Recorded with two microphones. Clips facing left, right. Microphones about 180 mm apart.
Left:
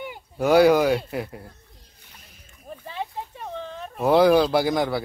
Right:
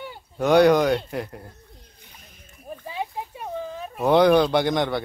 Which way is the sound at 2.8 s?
10° right (ahead or behind).